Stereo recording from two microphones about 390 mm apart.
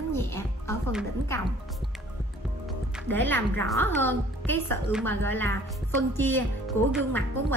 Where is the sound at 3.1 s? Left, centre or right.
Centre.